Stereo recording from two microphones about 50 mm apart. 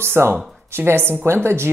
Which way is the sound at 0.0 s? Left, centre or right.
Right.